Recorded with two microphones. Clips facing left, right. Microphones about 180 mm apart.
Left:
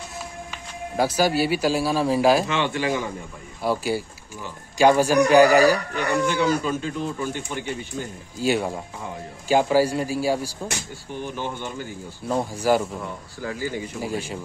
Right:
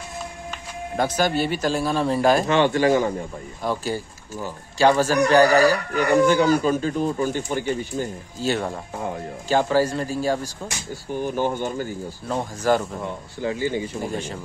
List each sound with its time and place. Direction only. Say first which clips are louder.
0.5 s speech: right 2 dB; 10° left (ahead or behind)
2.4 s a man's voice: right 6 dB; 40° right (ahead or behind)
3.6 s speech: left 2 dB; 10° left (ahead or behind)
5.9 s speech: right 5 dB; 40° right (ahead or behind)
8.4 s speech: left 2 dB; 10° left (ahead or behind)
11.1 s a man's voice: right 7 dB; 45° right (ahead or behind)
12.3 s speech: left 1 dB; 10° left (ahead or behind)
13.0 s speech: right 4 dB; 25° right (ahead or behind)
14.0 s speech: even; 10° left (ahead or behind)